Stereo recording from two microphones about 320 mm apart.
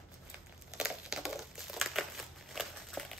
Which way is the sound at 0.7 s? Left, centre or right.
Centre.